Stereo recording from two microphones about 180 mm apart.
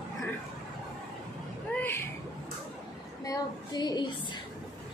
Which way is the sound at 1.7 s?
10° left (ahead or behind).